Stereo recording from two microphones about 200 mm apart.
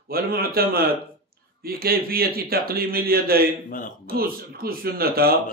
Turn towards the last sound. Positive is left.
turn(degrees=-50)  # may be behind; listen again after turning